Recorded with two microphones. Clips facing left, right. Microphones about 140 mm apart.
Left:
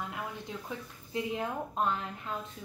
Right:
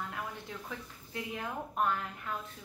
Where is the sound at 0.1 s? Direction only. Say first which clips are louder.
Left 2 dB; 20° left (ahead or behind).